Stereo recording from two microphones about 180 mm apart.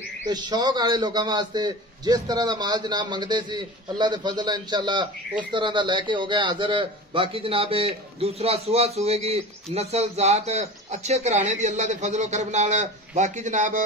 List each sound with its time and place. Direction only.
0.3 s a man's voice: 20° right (ahead or behind); by 13.8 s 45° right (ahead or behind)